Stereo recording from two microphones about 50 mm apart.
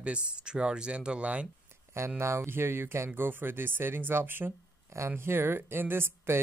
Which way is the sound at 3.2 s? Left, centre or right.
Right.